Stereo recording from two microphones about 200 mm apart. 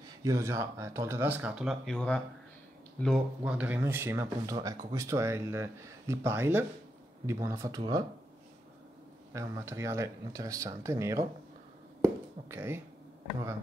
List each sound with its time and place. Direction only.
0.2 s speech: 15° right (ahead or behind)
9.3 s speech: 15° right (ahead or behind)